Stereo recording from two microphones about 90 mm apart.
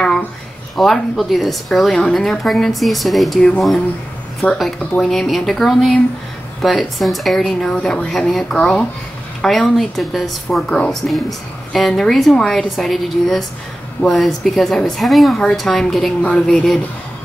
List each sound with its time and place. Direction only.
0.7 s a woman's voice: centre (ahead or behind)
4.4 s speech: 15° left (ahead or behind)
5.0 s a woman's voice: 5° left (ahead or behind)